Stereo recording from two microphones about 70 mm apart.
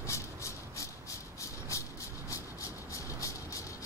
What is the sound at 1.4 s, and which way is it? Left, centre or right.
Vehicle, left.